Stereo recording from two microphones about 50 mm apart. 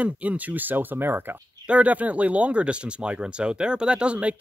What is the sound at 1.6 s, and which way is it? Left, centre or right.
Speech, right.